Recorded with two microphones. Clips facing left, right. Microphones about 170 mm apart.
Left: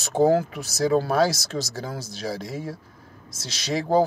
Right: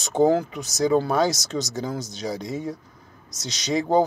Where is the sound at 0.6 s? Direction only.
20° right (ahead or behind).